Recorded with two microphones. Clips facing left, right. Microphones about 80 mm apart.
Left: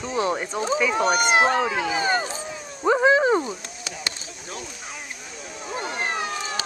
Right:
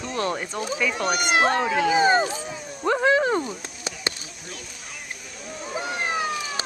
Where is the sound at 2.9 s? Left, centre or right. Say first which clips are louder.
Left 3 dB; centre.